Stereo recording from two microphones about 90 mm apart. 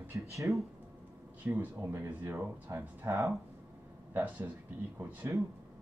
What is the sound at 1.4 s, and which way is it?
Speech, 20° right (ahead or behind).